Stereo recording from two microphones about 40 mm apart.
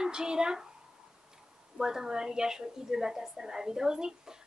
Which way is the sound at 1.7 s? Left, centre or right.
Centre.